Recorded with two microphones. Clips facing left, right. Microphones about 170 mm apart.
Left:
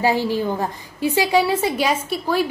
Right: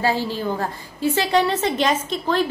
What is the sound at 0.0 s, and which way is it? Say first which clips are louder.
A woman's voice: left 3 dB; 15° left (ahead or behind).